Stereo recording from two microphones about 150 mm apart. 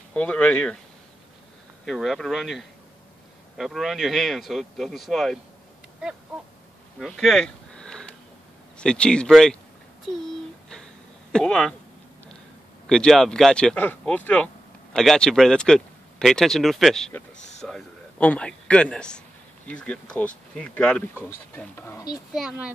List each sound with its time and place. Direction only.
0.1 s speech: 10° left (ahead or behind)
1.9 s speech: centre (ahead or behind)
7.0 s a sound: centre (ahead or behind)
8.7 s speech: 5° left (ahead or behind)
11.3 s speech: 5° left (ahead or behind)
12.8 s speech: 5° left (ahead or behind)
22.1 s speech: 5° right (ahead or behind)